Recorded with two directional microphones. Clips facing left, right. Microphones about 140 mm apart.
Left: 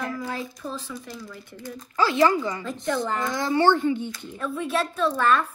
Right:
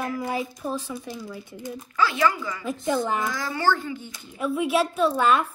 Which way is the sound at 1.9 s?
30° left (ahead or behind).